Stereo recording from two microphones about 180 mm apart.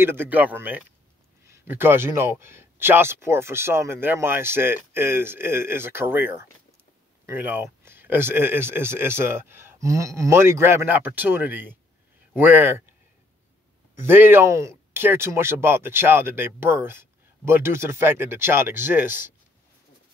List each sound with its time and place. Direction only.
0.0 s speech: 10° right (ahead or behind)
13.9 s speech: 10° right (ahead or behind)